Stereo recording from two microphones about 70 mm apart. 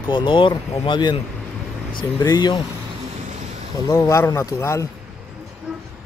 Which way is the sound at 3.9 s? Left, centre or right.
Left.